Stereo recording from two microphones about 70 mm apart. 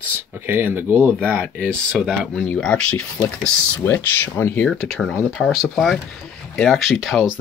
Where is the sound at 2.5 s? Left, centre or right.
Centre.